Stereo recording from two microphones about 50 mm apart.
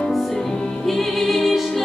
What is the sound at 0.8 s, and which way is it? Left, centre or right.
Music, centre.